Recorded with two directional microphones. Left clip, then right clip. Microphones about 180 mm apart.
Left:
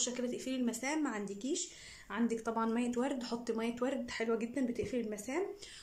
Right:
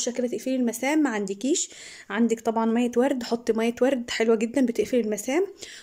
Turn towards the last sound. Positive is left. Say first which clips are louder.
# right 14 dB
turn(degrees=-60)  # may be behind; listen again after turning